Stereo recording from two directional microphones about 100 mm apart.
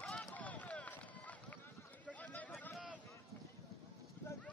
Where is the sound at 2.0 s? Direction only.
15° left (ahead or behind).